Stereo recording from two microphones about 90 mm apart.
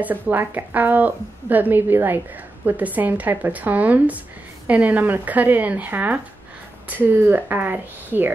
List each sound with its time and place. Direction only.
0.0 s a woman's voice: 20° right (ahead or behind)